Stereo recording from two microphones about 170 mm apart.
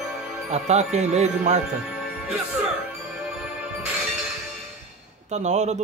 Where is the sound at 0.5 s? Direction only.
40° right (ahead or behind).